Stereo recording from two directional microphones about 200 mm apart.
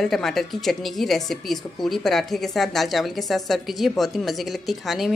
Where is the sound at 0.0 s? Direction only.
Centre (ahead or behind).